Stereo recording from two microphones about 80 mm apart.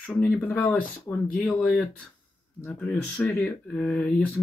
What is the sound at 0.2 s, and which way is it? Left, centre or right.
Speech, left.